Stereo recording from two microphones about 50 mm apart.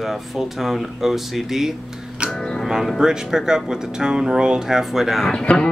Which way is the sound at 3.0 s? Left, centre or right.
Centre.